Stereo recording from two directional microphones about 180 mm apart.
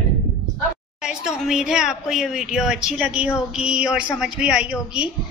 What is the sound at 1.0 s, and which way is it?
A woman's voice, centre (ahead or behind).